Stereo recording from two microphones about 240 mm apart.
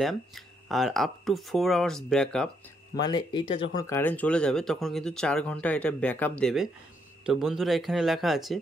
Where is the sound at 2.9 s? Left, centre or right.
Centre.